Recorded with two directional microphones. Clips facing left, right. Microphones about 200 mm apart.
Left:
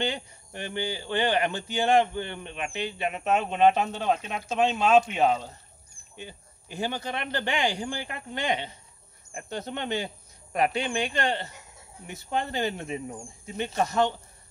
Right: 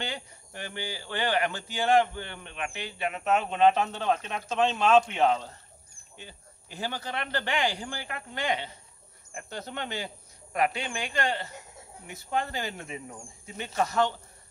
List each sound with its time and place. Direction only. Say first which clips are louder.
0.0 s speech: left 6 dB; 20° left (ahead or behind)